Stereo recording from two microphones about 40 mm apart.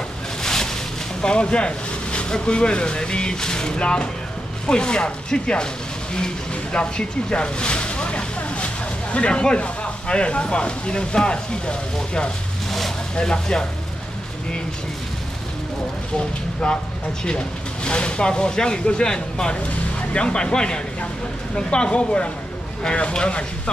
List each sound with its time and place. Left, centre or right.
0.4 s boat: centre
1.2 s speech: left
16.6 s speech: centre
17.8 s speech: left